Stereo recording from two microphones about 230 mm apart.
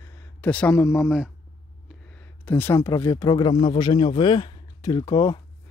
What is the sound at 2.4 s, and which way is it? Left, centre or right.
Speech, centre.